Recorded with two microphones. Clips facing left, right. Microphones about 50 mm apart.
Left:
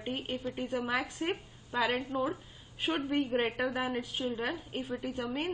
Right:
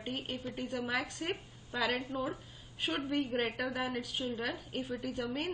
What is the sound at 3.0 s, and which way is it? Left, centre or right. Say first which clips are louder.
A woman's voice: left 3 dB; left.